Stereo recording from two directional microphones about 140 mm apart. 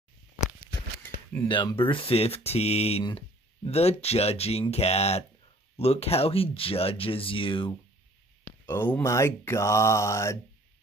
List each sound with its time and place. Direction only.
1.0 s a sound: 15° left (ahead or behind)
1.5 s speech: 35° left (ahead or behind)
8.6 s speech: 15° left (ahead or behind)